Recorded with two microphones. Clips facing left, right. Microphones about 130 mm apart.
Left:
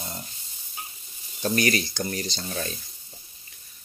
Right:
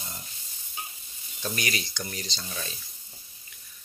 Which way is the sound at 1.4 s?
45° left (ahead or behind).